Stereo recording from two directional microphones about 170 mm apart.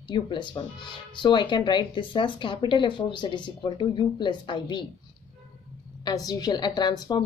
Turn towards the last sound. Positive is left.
turn(degrees=25)  # may be behind; listen again after turning